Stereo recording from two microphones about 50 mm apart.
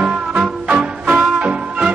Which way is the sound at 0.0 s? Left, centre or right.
Right.